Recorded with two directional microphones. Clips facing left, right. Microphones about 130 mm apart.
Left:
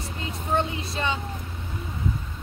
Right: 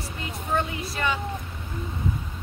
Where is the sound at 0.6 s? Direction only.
25° left (ahead or behind).